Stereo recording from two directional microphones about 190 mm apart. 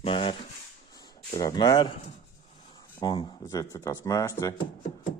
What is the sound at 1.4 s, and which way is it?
Speech, 20° left (ahead or behind).